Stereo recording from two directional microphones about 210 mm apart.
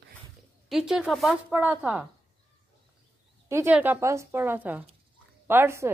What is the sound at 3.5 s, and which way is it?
Speech, 10° right (ahead or behind).